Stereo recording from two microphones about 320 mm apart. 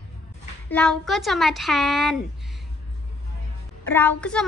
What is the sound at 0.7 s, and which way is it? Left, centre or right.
Speech, centre.